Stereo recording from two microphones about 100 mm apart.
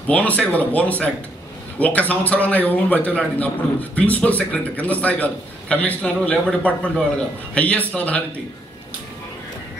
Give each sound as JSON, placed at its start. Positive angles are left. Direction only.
{"t": 0.1, "sound": "a man's voice", "side_deg": 15}